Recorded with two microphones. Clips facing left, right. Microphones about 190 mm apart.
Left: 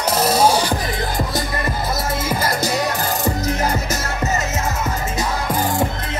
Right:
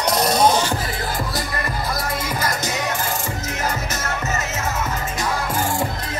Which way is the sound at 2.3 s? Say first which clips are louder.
Left 4 dB; 30° left (ahead or behind).